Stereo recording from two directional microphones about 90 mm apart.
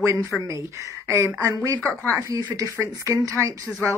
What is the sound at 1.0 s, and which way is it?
Speech, 35° right (ahead or behind).